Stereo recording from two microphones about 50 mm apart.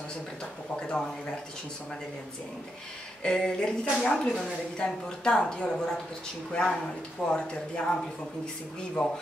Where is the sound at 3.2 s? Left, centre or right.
Centre.